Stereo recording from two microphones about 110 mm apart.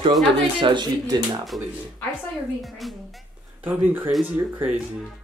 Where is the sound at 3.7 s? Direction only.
20° right (ahead or behind).